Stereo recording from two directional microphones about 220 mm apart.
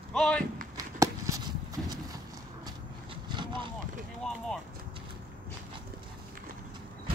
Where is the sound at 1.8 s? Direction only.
Centre (ahead or behind).